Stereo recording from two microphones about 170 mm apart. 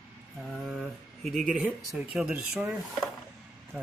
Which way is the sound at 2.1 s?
5° right (ahead or behind).